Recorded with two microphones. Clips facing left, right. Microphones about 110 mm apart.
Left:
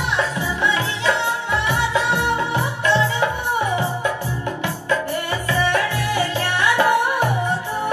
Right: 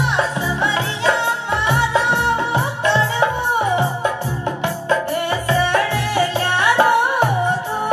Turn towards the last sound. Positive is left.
turn(degrees=-20)  # may be behind; listen again after turning